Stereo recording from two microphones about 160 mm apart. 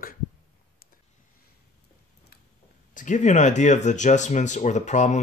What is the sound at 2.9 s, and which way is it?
Speech, 50° left (ahead or behind).